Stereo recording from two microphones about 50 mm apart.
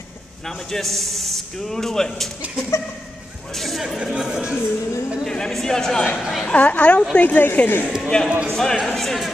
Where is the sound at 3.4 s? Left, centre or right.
Centre.